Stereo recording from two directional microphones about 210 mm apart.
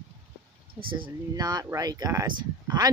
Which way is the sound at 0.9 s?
20° right (ahead or behind).